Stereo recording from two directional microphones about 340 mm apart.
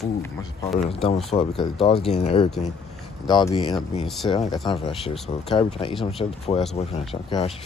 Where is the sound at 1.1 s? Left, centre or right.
Centre.